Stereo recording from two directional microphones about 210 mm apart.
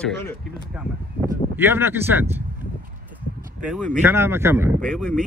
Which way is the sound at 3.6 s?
Centre (ahead or behind).